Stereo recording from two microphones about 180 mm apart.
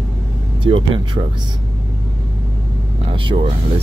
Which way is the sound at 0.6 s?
30° right (ahead or behind).